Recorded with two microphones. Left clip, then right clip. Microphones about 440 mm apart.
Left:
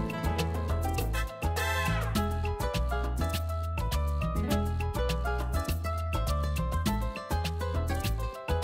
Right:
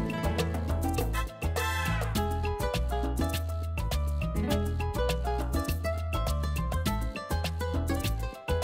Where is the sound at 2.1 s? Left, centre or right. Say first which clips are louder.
Right 1 dB; right.